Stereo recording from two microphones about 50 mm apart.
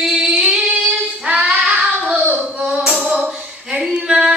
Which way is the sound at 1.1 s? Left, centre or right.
Right.